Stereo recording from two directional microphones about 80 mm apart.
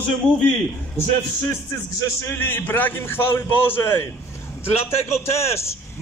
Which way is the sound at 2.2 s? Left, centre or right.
Left.